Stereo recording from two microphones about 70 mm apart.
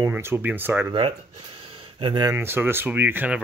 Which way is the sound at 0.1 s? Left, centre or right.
Right.